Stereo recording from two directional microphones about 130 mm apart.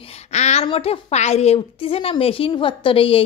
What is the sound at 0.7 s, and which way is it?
A woman's voice, 50° left (ahead or behind).